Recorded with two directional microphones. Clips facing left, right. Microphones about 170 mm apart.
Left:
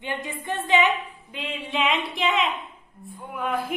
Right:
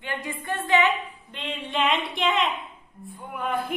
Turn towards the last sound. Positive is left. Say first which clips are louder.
# left 1 dB
turn(degrees=0)  # may be behind; listen again after turning